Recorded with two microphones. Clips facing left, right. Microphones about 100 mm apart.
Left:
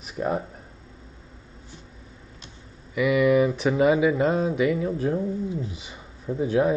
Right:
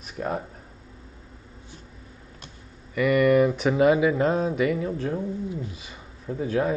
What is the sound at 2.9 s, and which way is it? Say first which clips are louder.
Speech: even; centre (ahead or behind).